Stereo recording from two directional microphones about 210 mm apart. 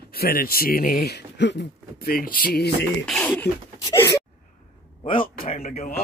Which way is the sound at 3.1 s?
5° left (ahead or behind).